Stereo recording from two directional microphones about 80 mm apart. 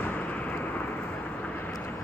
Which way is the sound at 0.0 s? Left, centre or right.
Centre.